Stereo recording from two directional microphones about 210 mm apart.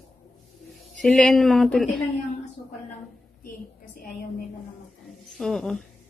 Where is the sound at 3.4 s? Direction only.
40° left (ahead or behind).